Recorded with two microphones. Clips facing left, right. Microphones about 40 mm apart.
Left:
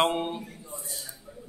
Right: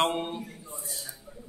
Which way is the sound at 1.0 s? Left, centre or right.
Centre.